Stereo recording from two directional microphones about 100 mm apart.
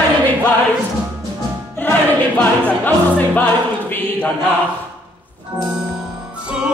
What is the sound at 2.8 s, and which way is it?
Music, 20° left (ahead or behind).